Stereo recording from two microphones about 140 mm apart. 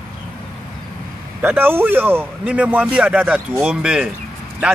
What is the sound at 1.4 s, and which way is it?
A man's voice, 15° right (ahead or behind).